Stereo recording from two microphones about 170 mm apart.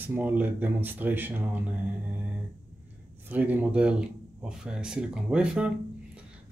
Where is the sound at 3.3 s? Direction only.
10° right (ahead or behind).